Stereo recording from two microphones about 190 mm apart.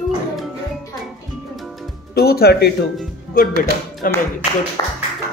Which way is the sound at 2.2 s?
55° left (ahead or behind).